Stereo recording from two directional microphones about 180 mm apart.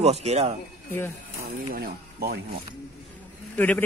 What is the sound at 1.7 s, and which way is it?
Speech, 60° right (ahead or behind).